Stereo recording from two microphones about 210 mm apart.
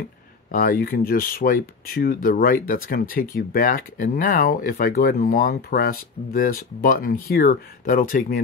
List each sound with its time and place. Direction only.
0.5 s speech: 40° left (ahead or behind)